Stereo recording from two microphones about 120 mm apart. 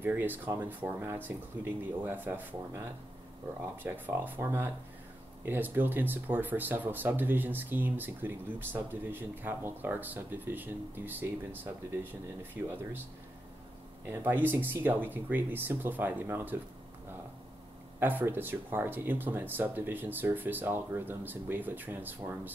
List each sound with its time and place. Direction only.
0.0 s speech: 15° right (ahead or behind)
3.8 s speech: 15° right (ahead or behind)
14.0 s speech: 20° right (ahead or behind)
17.9 s speech: 15° right (ahead or behind)